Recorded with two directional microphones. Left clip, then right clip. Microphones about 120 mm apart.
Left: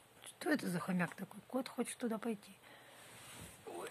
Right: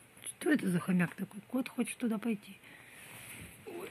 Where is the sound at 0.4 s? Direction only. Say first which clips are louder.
Right 6 dB; 10° right (ahead or behind).